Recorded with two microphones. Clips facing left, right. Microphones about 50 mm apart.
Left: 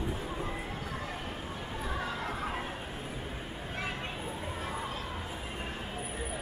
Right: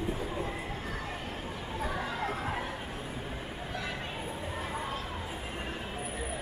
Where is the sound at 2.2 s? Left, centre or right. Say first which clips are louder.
Right 2 dB; right.